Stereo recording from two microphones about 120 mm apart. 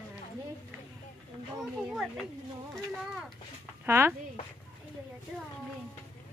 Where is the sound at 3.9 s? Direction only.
20° right (ahead or behind).